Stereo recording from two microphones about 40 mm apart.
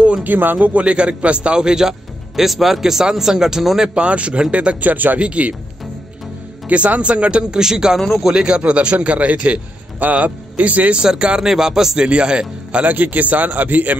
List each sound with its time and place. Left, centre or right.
0.2 s a man's voice: right
0.9 s speech: right
1.6 s speech: centre
3.9 s a man's voice: right
4.8 s a man's voice: right
5.2 s a man's voice: right
6.7 s a man's voice: right
7.6 s speech: centre
8.5 s a man's voice: right
11.0 s speech: right
12.1 s speech: right
12.8 s a man's voice: right